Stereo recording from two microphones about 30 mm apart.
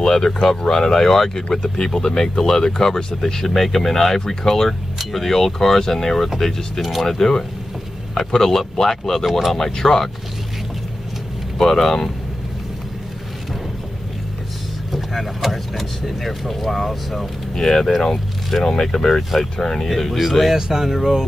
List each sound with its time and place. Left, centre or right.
0.0 s speech: left
11.7 s speech: centre
15.7 s speech: centre
18.6 s speech: centre
18.9 s speech: centre
19.9 s speech: centre
20.5 s speech: centre